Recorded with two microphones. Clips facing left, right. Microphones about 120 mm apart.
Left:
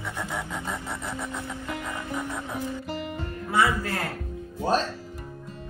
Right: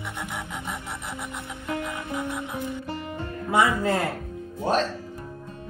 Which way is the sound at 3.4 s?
20° right (ahead or behind).